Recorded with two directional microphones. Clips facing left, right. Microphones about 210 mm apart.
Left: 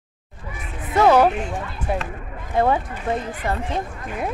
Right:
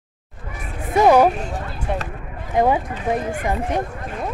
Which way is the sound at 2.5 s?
15° right (ahead or behind).